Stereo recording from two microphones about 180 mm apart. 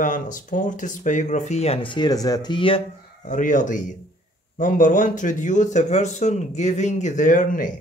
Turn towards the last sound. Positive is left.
turn(degrees=50)  # may be behind; listen again after turning